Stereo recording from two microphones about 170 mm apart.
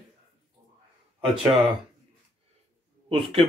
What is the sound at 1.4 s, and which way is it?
Speech, centre (ahead or behind).